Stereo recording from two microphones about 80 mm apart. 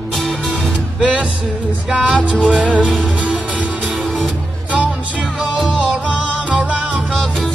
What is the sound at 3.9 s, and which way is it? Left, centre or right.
Music, centre.